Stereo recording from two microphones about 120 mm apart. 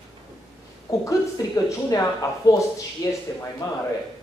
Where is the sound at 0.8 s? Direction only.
30° left (ahead or behind).